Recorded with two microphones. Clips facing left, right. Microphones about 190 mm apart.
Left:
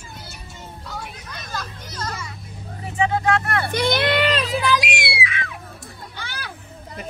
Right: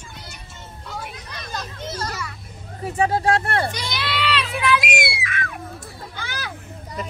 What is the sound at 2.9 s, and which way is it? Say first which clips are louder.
Speech: right 1 dB; 35° right (ahead or behind).